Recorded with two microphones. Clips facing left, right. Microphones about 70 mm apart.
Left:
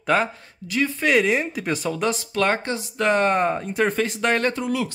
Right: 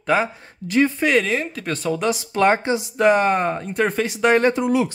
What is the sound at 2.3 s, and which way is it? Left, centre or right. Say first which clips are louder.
Speech: right 8 dB; centre.